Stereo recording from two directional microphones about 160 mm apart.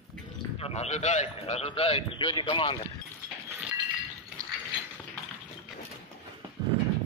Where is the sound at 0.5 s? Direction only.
40° left (ahead or behind).